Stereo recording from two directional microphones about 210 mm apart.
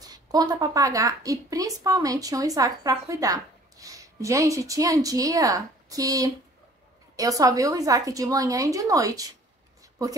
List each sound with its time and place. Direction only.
0.0 s a woman's voice: 20° right (ahead or behind)